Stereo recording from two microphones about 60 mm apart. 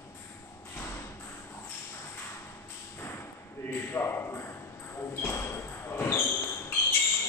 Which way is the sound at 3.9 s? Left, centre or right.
Left.